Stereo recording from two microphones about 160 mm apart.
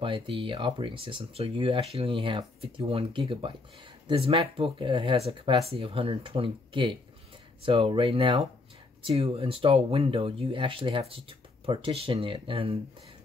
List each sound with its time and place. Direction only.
0.0 s speech: 35° right (ahead or behind)